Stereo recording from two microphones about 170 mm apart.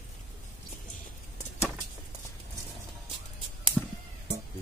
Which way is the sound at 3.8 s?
Centre (ahead or behind).